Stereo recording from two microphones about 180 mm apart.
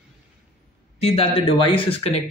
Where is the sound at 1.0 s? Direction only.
30° left (ahead or behind).